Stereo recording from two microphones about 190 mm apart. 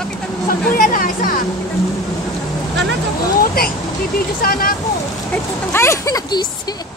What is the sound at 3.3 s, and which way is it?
Vehicle, 50° left (ahead or behind).